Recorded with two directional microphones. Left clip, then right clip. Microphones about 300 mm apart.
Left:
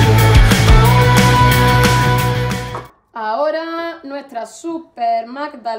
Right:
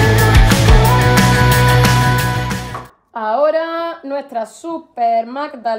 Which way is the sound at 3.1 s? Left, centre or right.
Centre.